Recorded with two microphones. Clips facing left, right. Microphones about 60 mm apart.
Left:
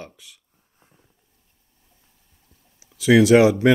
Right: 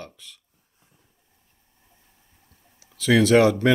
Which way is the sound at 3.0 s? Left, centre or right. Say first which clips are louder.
Left 3 dB; centre.